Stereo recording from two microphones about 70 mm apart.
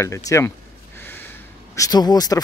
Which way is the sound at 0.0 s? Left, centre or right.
Left.